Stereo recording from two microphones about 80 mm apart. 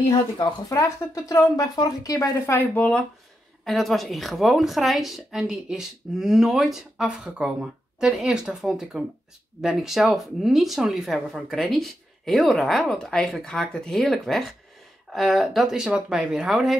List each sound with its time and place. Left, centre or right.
0.7 s speech: left
2.4 s speech: left
3.6 s a woman's voice: centre